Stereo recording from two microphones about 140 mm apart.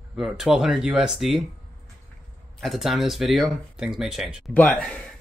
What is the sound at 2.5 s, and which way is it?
Speech, centre (ahead or behind).